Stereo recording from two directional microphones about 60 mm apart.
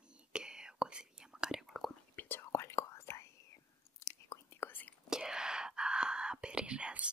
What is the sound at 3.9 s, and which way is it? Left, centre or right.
Chewing, left.